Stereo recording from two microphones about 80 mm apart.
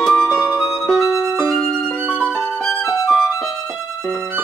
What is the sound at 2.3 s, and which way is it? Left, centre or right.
Music, centre.